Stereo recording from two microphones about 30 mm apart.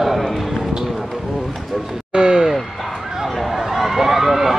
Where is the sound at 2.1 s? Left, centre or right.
Right.